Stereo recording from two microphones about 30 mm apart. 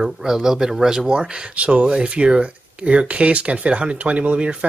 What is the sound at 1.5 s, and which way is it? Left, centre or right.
Speech, right.